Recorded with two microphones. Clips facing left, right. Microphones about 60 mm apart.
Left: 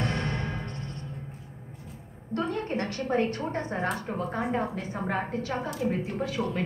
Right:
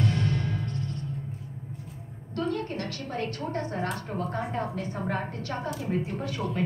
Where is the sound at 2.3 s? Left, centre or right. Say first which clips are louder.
Left 1 dB; left.